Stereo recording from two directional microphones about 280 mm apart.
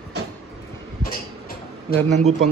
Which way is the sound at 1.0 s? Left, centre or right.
Left.